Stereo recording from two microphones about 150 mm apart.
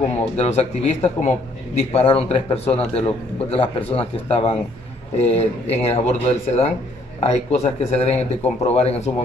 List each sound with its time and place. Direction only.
0.4 s a man's voice: 45° left (ahead or behind)